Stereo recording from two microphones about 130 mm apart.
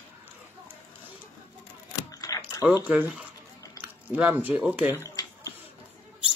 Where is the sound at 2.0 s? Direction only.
25° left (ahead or behind).